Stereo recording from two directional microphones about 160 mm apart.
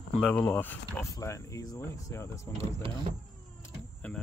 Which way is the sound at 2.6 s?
35° right (ahead or behind).